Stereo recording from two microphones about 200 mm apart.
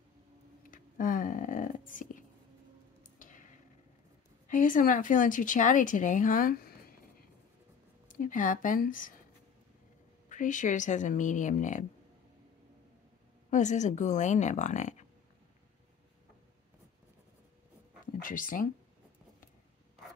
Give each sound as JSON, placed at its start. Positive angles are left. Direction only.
{"t": 0.7, "sound": "a sound", "side_deg": 40}
{"t": 4.5, "sound": "speech", "side_deg": 40}
{"t": 8.1, "sound": "speech", "side_deg": 40}
{"t": 10.3, "sound": "speech", "side_deg": 40}
{"t": 13.5, "sound": "speech", "side_deg": 35}
{"t": 18.2, "sound": "speech", "side_deg": 45}